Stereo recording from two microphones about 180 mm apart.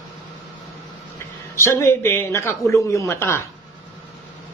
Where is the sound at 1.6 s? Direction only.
15° left (ahead or behind).